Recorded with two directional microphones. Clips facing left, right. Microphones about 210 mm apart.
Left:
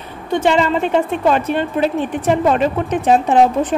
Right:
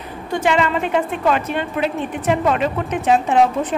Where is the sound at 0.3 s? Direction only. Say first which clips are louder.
Left 3 dB; 30° left (ahead or behind).